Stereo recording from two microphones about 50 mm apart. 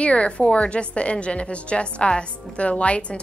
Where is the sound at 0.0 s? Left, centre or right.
Left.